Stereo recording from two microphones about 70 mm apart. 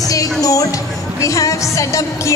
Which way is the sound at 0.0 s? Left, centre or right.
Left.